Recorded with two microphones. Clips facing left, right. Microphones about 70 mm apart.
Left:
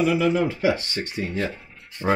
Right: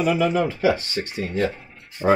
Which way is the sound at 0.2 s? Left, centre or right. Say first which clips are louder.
Right 1 dB; centre.